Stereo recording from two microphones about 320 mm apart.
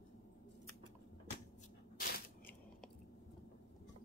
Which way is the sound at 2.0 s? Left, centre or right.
Left.